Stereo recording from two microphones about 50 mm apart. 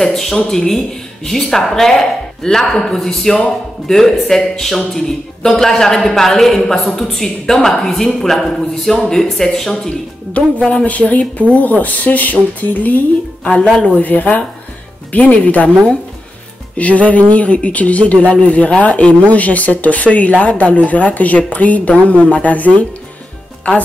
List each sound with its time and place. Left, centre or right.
0.0 s a man's voice: centre
10.3 s speech: left
13.4 s speech: left
16.7 s speech: left